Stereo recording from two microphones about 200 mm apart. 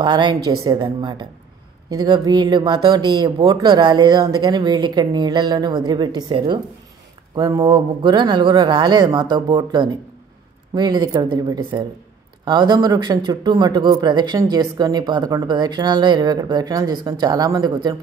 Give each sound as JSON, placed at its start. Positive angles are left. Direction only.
{"t": 0.0, "sound": "speech", "side_deg": -20}